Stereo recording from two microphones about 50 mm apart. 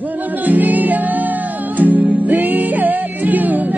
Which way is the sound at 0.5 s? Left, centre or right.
Right.